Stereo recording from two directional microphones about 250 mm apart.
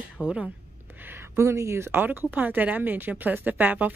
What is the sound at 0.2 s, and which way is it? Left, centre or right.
A woman's voice, centre.